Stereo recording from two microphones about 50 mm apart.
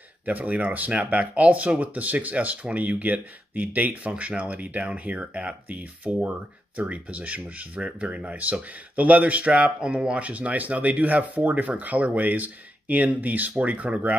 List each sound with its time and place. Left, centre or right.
0.2 s speech: right